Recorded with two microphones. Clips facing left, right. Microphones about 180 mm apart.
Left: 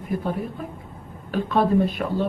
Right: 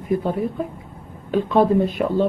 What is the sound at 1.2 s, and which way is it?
Speech, 20° right (ahead or behind).